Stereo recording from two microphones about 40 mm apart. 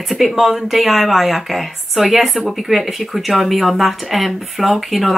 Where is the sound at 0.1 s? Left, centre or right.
Centre.